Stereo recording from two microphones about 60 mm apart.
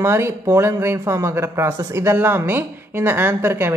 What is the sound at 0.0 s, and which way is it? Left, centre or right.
Speech, right.